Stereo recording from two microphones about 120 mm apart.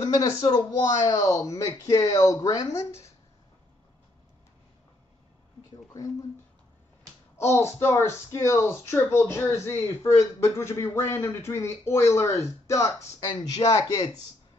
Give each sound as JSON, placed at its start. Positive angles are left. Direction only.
{"t": 0.0, "sound": "speech", "side_deg": 35}
{"t": 7.3, "sound": "speech", "side_deg": 20}